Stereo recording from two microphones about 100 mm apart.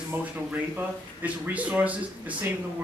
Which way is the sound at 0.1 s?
15° right (ahead or behind).